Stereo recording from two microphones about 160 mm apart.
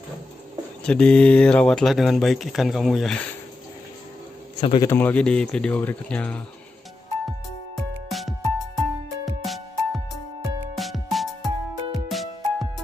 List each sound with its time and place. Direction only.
0.8 s speech: 5° left (ahead or behind)
4.6 s a man's voice: 35° left (ahead or behind)
4.8 s speech: 10° left (ahead or behind)
7.2 s music: centre (ahead or behind)